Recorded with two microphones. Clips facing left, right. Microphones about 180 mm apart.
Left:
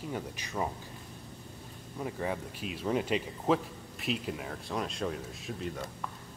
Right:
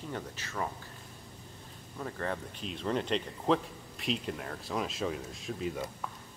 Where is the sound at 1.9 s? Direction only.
10° left (ahead or behind).